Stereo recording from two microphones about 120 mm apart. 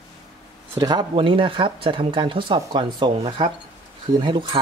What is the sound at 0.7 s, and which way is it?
Speech, 35° right (ahead or behind).